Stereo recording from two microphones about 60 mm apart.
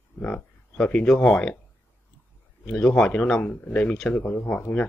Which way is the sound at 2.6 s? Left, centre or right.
Centre.